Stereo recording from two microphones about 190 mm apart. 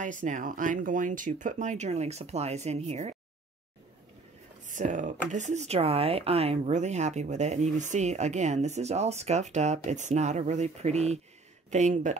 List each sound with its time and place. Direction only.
0.0 s speech: 40° right (ahead or behind)
4.6 s speech: 40° right (ahead or behind)